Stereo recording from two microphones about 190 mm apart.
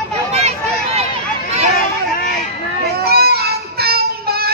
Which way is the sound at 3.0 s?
55° right (ahead or behind).